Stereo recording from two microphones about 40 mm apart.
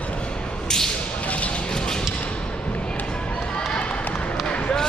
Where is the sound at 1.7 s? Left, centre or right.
Centre.